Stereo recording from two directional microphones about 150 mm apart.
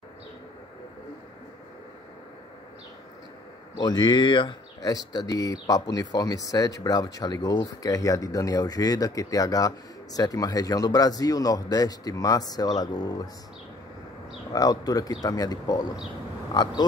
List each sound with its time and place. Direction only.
3.7 s speech: 30° left (ahead or behind)
14.5 s speech: 25° left (ahead or behind)